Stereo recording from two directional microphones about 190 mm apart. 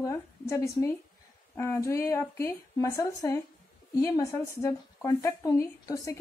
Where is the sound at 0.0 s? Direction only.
15° left (ahead or behind).